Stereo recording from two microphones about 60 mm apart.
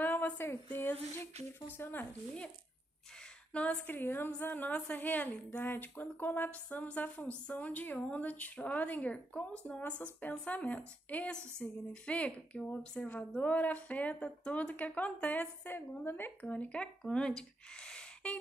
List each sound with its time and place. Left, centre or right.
0.0 s a woman's voice: left
3.5 s a woman's voice: centre
3.8 s a woman's voice: left
15.7 s a woman's voice: left
16.4 s a woman's voice: left
17.4 s a sound: centre